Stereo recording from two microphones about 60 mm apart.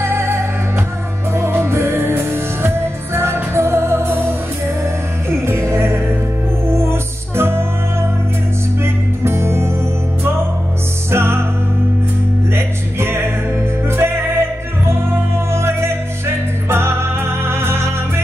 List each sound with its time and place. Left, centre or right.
0.0 s music: right
11.1 s music: right
12.5 s music: right